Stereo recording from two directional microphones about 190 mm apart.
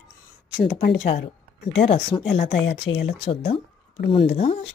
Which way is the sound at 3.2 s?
30° left (ahead or behind).